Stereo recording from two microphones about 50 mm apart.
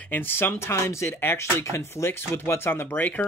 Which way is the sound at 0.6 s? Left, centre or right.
Left.